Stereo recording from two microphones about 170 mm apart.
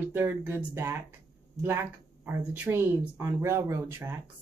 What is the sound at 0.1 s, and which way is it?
Speech, 10° right (ahead or behind).